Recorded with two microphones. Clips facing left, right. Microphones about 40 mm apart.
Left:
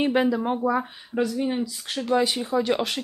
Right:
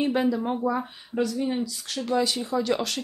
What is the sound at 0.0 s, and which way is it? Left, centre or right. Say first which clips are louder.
Speech: left 2 dB; left.